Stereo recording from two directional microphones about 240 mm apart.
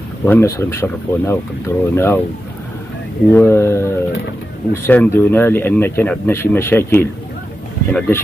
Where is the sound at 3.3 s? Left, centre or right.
Centre.